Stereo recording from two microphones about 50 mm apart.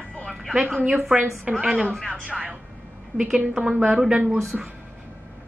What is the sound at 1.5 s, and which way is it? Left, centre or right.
Speech, right.